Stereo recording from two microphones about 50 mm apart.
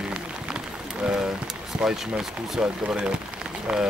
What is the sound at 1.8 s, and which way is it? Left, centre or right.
Speech, centre.